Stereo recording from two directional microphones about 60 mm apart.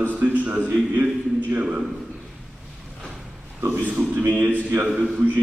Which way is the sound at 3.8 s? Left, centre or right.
Right.